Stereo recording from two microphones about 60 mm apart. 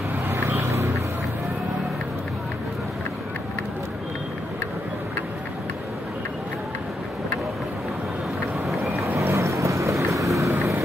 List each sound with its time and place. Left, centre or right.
0.3 s vehicle: right
9.2 s boat: right